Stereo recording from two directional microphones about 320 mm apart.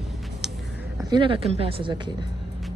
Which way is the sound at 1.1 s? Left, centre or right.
Centre.